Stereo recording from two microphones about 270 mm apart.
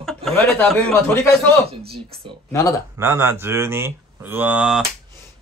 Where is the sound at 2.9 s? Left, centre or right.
Centre.